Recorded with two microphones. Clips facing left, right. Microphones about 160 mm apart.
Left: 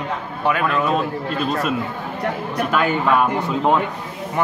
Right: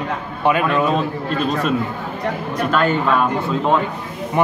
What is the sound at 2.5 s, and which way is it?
Speech, 10° left (ahead or behind).